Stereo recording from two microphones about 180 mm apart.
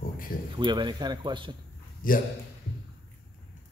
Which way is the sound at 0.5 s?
25° right (ahead or behind).